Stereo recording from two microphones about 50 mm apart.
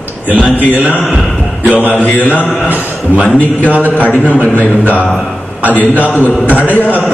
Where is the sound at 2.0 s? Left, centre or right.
Left.